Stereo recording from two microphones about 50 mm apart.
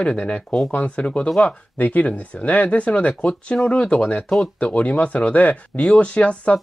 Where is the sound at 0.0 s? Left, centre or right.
Left.